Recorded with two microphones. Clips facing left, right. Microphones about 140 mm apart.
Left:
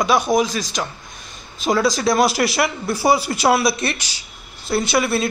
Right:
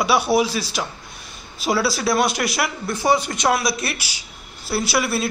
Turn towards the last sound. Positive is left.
turn(degrees=0)  # may be behind; listen again after turning